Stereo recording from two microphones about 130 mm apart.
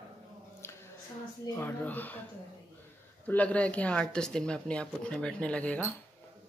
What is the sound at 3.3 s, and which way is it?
Speech, 10° left (ahead or behind).